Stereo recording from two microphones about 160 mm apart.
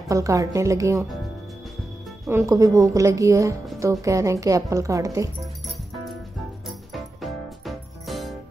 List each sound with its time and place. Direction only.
0.1 s a woman's voice: 20° right (ahead or behind)
2.2 s a woman's voice: 20° right (ahead or behind)
6.9 s music: centre (ahead or behind)